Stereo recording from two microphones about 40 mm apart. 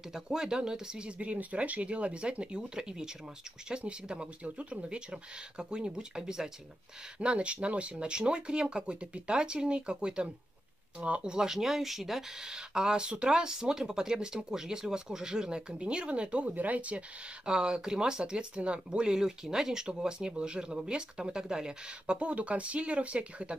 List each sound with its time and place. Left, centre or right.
0.1 s speech: centre; by 4.7 s right
4.8 s speech: right
7.2 s speech: right
11.0 s speech: right
11.2 s speech: centre
16.5 s speech: right
17.5 s speech: right